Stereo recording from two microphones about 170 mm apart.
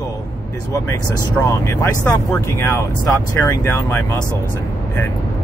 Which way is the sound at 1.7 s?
20° left (ahead or behind).